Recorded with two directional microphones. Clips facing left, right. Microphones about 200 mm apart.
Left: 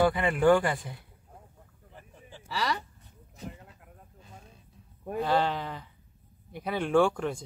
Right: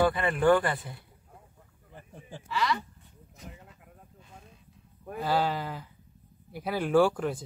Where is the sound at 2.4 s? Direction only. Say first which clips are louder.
Right 2 dB; 35° left (ahead or behind).